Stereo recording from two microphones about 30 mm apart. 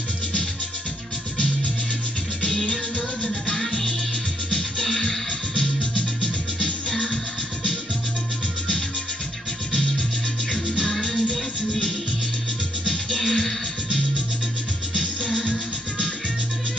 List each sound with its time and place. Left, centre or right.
2.4 s music: left
6.6 s music: centre
10.5 s music: centre
12.8 s music: centre